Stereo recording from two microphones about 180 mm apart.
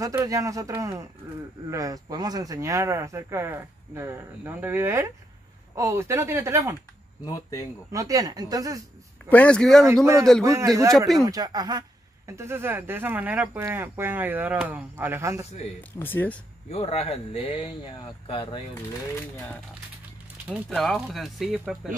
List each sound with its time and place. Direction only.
0.0 s speech: 20° right (ahead or behind)
7.2 s speech: 20° left (ahead or behind)
7.9 s speech: 20° right (ahead or behind)
9.3 s speech: 5° left (ahead or behind)
10.4 s speech: 15° right (ahead or behind)
16.0 s speech: 10° left (ahead or behind)
16.7 s speech: 35° left (ahead or behind)
20.4 s speech: 5° right (ahead or behind)